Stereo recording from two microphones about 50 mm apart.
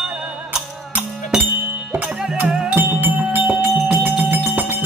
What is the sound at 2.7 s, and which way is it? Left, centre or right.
Music, right.